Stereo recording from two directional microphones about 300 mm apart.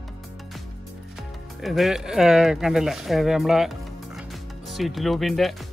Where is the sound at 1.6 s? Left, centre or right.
Centre.